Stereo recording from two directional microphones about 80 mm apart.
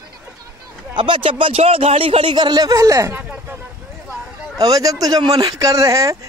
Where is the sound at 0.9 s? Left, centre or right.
Right.